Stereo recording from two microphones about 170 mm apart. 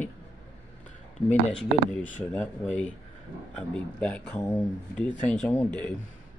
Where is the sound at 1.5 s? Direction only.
5° left (ahead or behind).